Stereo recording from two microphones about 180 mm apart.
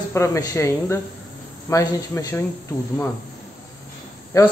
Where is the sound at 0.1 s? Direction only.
15° left (ahead or behind).